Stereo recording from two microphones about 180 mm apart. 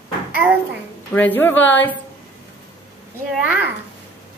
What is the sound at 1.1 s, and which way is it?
Speech, 10° left (ahead or behind).